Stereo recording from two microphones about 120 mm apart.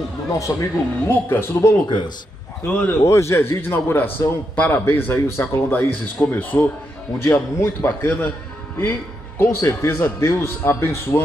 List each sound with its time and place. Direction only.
0.3 s a man's voice: 20° left (ahead or behind)
9.4 s a man's voice: 25° left (ahead or behind)